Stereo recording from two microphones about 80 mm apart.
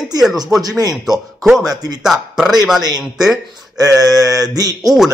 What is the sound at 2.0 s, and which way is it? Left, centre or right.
Speech, centre.